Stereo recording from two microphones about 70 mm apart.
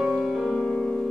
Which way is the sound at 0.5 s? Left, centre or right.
Centre.